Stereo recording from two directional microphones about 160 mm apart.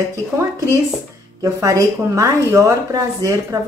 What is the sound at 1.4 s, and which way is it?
Speech, 20° right (ahead or behind).